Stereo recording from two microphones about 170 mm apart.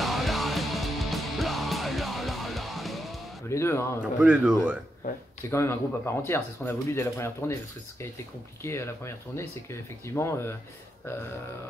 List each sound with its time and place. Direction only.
0.0 s music: centre (ahead or behind)
3.4 s a sound: 15° left (ahead or behind)
4.0 s a man's voice: 5° right (ahead or behind)
5.4 s speech: 15° left (ahead or behind)
8.6 s speech: 15° left (ahead or behind)